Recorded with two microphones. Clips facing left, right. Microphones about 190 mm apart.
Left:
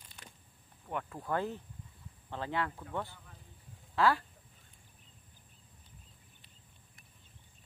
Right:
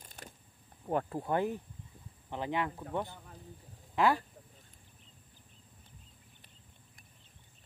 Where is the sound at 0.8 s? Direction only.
35° right (ahead or behind).